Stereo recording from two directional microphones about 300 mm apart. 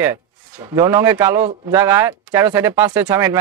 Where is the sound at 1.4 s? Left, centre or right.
Right.